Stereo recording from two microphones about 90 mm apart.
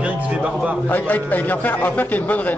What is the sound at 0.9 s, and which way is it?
A man's voice, 20° left (ahead or behind).